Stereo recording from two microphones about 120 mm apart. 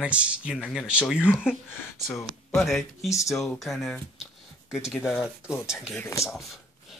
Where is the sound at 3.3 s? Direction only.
Centre (ahead or behind).